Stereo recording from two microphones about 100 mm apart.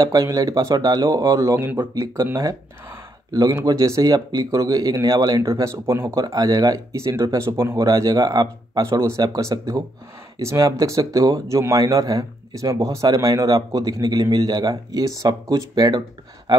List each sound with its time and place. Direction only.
0.0 s speech: 40° right (ahead or behind)
1.6 s speech: 20° right (ahead or behind)
3.6 s speech: 35° right (ahead or behind)
6.2 s speech: 40° right (ahead or behind)